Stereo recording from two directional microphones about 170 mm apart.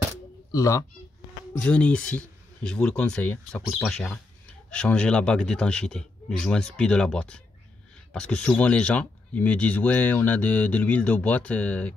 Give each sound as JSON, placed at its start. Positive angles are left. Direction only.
{"t": 0.5, "sound": "speech", "side_deg": 20}
{"t": 1.6, "sound": "a man's voice", "side_deg": 5}